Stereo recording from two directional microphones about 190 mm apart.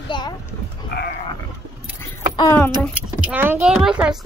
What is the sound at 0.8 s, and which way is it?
Sheep, 55° left (ahead or behind).